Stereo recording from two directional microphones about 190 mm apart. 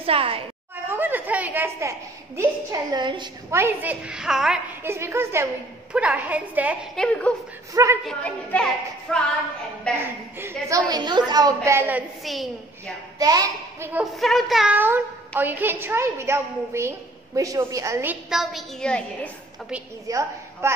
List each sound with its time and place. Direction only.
0.0 s a woman's voice: 30° right (ahead or behind)
0.8 s a woman's voice: 10° right (ahead or behind)
3.5 s a woman's voice: 10° right (ahead or behind)
4.8 s a woman's voice: 15° right (ahead or behind)
7.0 s a woman's voice: 5° left (ahead or behind)
7.7 s a woman's voice: 15° right (ahead or behind)
8.0 s a woman's voice: 5° left (ahead or behind)
10.3 s a woman's voice: 10° right (ahead or behind)
10.9 s a woman's voice: 20° right (ahead or behind)
12.2 s a woman's voice: centre (ahead or behind)
13.2 s a woman's voice: 20° right (ahead or behind)
14.1 s a woman's voice: centre (ahead or behind); by 18.1 s 15° right (ahead or behind)
18.3 s a woman's voice: centre (ahead or behind)
20.1 s a woman's voice: 15° right (ahead or behind)